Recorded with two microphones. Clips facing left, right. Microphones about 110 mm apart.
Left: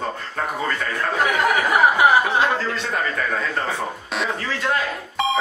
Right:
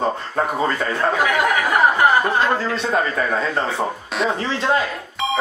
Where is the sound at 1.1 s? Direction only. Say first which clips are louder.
Left 2 dB; 5° right (ahead or behind).